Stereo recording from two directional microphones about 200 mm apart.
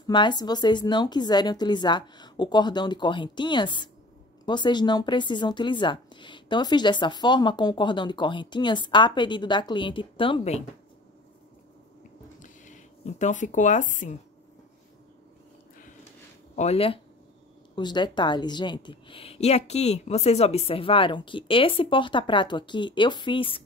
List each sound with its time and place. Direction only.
0.0 s speech: 20° left (ahead or behind)
12.4 s speech: 35° left (ahead or behind)
16.5 s speech: 30° left (ahead or behind)